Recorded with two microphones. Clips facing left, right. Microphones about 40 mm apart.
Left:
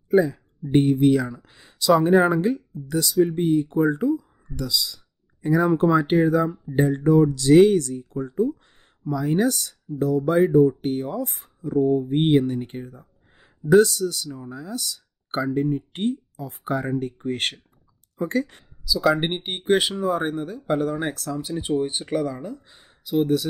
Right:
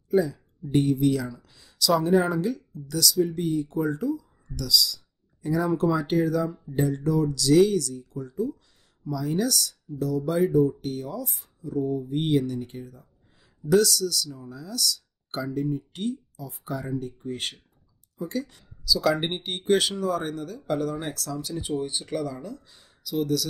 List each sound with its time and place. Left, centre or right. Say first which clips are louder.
0.1 s speech: left 4 dB; left
18.9 s speech: left 3 dB; centre